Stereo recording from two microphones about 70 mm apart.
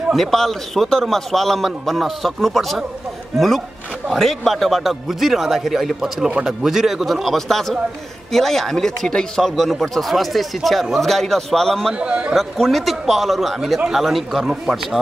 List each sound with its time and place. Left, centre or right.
0.1 s a man's voice: centre
11.9 s a man's voice: centre
12.4 s a man's voice: centre